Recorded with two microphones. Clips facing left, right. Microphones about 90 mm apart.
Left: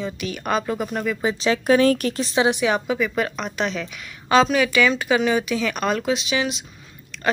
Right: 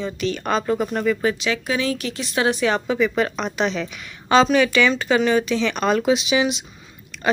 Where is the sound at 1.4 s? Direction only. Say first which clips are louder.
Left 6 dB; 40° left (ahead or behind).